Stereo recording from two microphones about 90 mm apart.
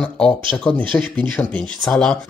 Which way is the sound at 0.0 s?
10° left (ahead or behind).